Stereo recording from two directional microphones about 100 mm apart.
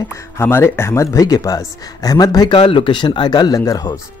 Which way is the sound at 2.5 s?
55° left (ahead or behind).